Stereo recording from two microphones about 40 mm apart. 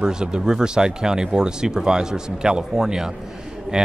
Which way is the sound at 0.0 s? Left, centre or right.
Centre.